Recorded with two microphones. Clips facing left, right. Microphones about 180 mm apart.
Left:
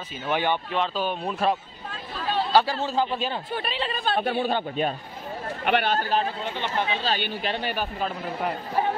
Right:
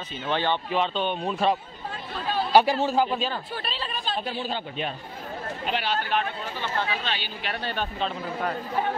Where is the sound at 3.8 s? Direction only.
60° left (ahead or behind).